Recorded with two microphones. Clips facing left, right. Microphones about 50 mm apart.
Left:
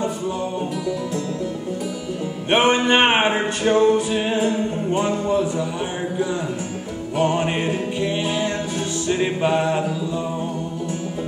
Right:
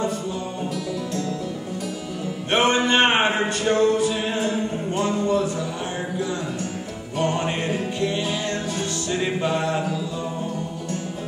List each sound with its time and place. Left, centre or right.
2.5 s music: centre
7.2 s music: centre
9.1 s music: centre